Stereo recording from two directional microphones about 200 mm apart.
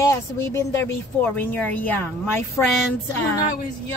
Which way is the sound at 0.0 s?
15° left (ahead or behind).